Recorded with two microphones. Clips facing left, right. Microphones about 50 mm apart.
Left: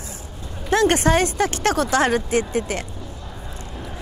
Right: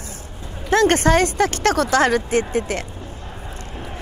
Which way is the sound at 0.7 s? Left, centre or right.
Right.